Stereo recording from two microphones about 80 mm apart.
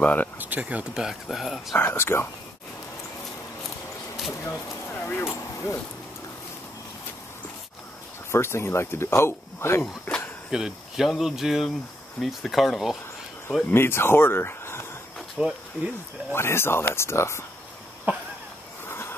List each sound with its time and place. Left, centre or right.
0.0 s speech: left
0.4 s speech: centre
1.0 s speech: centre
1.8 s speech: left
4.4 s speech: left
8.3 s speech: left
10.5 s speech: centre
13.7 s speech: left
15.4 s speech: centre
16.3 s speech: left
18.9 s a sound: left